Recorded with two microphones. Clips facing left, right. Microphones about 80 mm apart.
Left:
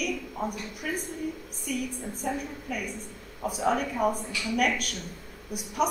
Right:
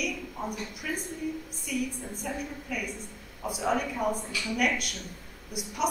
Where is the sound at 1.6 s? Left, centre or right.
Left.